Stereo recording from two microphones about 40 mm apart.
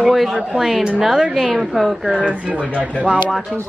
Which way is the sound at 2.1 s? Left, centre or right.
Right.